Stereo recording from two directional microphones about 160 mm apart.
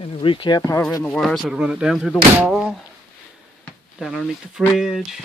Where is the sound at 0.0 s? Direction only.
35° left (ahead or behind).